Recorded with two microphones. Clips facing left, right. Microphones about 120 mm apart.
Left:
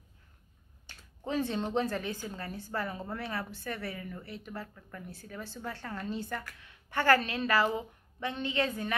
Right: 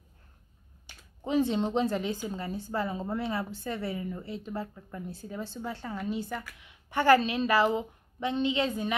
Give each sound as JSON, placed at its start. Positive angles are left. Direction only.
{"t": 0.8, "sound": "a woman's voice", "side_deg": -15}